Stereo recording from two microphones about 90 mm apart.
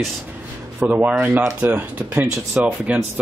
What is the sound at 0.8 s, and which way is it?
A man's voice, 15° right (ahead or behind).